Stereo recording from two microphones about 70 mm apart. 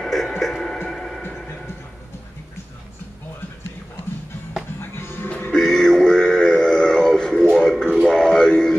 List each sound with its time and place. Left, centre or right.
0.0 s a sound: centre
0.8 s music: centre
4.7 s music: left
5.5 s music: centre